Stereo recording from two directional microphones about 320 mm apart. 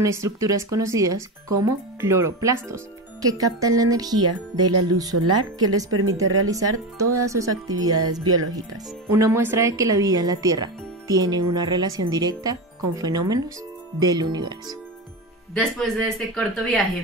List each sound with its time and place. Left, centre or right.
0.0 s speech: centre
5.1 s speech: right
6.4 s speech: centre
15.5 s speech: centre